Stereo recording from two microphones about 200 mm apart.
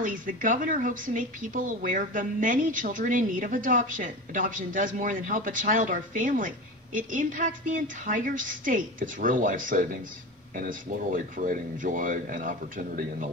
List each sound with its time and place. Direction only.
0.0 s a woman's voice: 40° right (ahead or behind)